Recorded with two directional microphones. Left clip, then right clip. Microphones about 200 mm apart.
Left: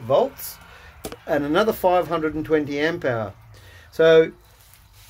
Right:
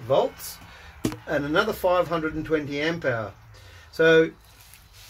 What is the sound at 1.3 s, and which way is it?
Speech, 40° left (ahead or behind).